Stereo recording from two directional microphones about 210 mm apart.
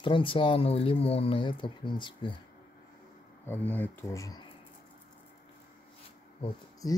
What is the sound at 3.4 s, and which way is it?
Speech, 10° left (ahead or behind).